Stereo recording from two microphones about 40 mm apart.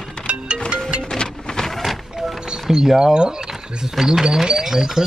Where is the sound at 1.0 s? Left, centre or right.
Centre.